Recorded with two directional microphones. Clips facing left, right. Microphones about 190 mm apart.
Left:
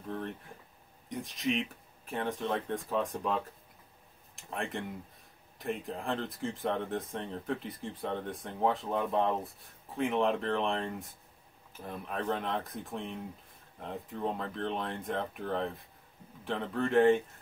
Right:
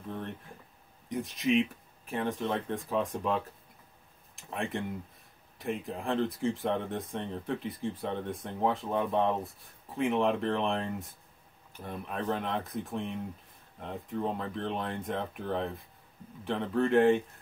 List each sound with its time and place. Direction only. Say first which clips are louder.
1.0 s speech: right 3 dB; centre (ahead or behind)